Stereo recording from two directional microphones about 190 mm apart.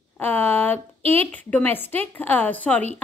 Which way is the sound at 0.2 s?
10° left (ahead or behind).